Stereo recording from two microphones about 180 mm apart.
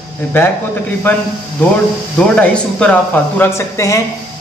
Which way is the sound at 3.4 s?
15° left (ahead or behind).